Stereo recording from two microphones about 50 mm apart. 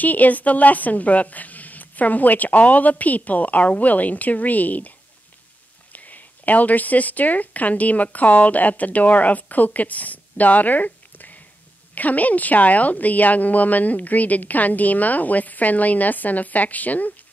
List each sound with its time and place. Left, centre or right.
0.0 s a woman's voice: left
5.9 s a woman's voice: left